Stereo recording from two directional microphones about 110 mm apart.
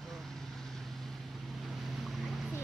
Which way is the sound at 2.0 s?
Centre (ahead or behind).